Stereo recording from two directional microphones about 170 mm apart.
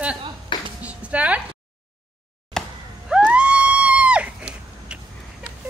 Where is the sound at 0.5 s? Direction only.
25° left (ahead or behind).